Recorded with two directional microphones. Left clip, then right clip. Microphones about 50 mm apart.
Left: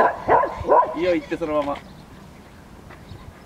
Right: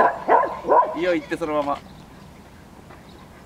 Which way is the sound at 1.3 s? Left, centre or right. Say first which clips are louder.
Even; right.